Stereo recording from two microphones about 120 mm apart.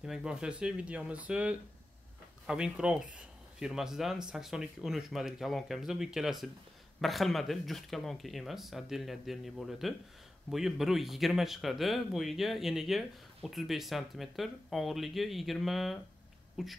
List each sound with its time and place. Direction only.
0.0 s speech: 5° right (ahead or behind)